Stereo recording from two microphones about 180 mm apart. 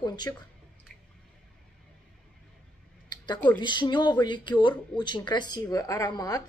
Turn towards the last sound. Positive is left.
turn(degrees=20)  # may be behind; listen again after turning